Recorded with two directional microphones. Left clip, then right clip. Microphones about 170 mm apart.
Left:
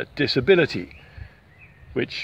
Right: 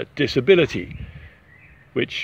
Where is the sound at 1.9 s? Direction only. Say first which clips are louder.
Right 3 dB; 30° right (ahead or behind).